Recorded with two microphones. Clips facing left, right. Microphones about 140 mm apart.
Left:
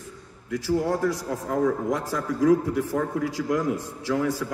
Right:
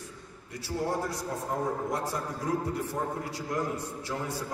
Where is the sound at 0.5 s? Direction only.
90° left.